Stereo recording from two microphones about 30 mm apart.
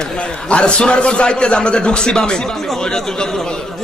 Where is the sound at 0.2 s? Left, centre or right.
Left.